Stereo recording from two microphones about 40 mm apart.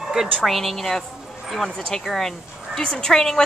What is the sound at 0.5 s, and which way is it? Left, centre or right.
A woman's voice, centre.